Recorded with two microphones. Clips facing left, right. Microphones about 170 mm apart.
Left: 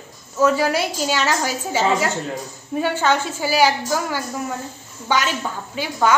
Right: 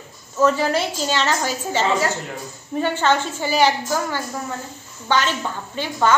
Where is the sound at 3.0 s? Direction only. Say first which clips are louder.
Even; 5° left (ahead or behind).